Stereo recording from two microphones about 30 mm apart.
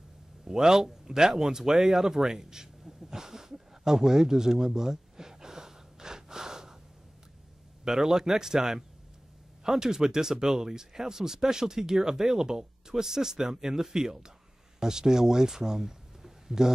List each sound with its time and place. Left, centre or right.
0.5 s speech: centre
2.8 s a sound: centre
7.8 s speech: centre